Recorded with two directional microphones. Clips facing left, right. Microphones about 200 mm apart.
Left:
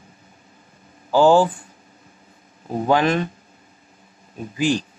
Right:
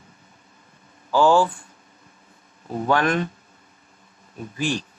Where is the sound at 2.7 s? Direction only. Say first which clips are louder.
Left 3 dB; 20° left (ahead or behind).